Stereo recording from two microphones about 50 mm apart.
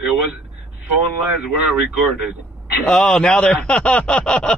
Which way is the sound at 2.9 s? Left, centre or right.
Centre.